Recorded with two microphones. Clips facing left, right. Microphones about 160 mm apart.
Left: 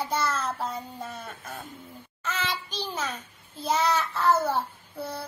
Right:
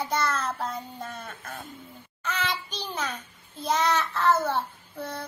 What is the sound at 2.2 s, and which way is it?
A child's voice, centre (ahead or behind).